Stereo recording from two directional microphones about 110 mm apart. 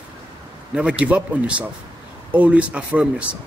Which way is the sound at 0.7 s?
10° right (ahead or behind).